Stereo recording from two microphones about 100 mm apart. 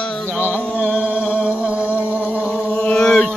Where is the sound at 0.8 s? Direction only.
15° right (ahead or behind).